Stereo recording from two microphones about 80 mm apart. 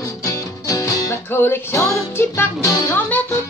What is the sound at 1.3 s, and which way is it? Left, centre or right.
Music, left.